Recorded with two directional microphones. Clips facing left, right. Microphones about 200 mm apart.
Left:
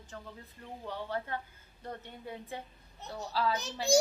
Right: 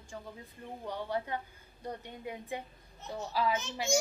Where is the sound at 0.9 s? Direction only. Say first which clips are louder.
Right 2 dB; 15° right (ahead or behind).